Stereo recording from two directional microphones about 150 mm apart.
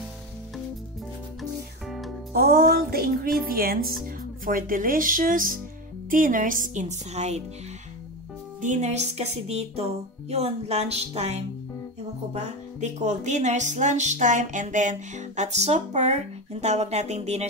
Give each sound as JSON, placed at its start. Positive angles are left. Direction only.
{"t": 1.9, "sound": "music", "side_deg": 0}
{"t": 2.3, "sound": "a woman's voice", "side_deg": -90}
{"t": 8.5, "sound": "speech", "side_deg": -50}